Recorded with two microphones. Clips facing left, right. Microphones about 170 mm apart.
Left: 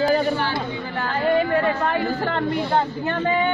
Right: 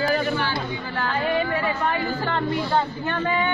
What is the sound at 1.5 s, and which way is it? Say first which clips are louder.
Speech: left 4 dB; 50° left (ahead or behind).